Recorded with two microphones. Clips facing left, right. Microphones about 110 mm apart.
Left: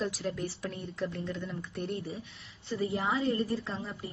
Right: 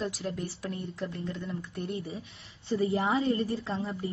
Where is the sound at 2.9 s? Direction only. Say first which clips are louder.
Right 1 dB; 30° right (ahead or behind).